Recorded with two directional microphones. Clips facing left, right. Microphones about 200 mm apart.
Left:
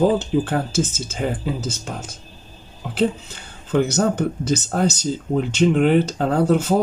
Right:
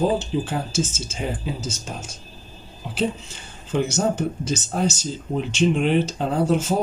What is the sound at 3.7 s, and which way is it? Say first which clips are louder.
Speech: left 3 dB; 60° left (ahead or behind).